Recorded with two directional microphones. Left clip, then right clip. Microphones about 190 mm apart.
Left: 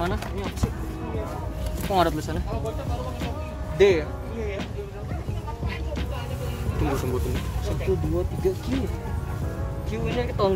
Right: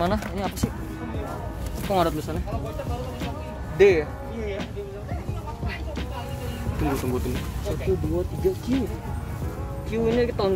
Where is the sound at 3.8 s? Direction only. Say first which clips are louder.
Right 1 dB; 15° right (ahead or behind).